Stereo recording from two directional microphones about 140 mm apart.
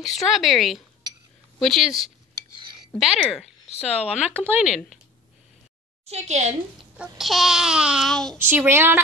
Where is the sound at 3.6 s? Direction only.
50° left (ahead or behind).